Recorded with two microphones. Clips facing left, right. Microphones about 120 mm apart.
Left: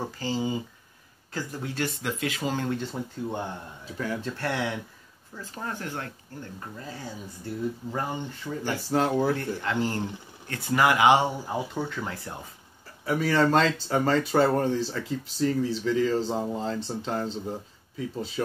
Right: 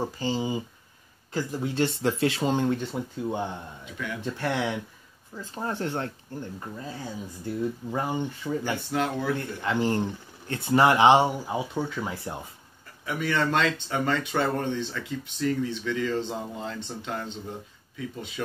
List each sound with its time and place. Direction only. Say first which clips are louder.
0.2 s speech: left 2 dB; 20° right (ahead or behind)
2.0 s speech: right 6 dB; 30° right (ahead or behind); by 3.4 s 10° right (ahead or behind)
3.8 s speech: left 5 dB; 35° left (ahead or behind)
4.2 s speech: right 1 dB; 15° right (ahead or behind)
6.8 s speech: right 2 dB; 20° right (ahead or behind)
8.7 s speech: left 3 dB; 35° left (ahead or behind)
9.6 s speech: right 2 dB; 15° right (ahead or behind)
11.4 s speech: right 1 dB; 5° right (ahead or behind)
13.0 s speech: left 4 dB; 35° left (ahead or behind)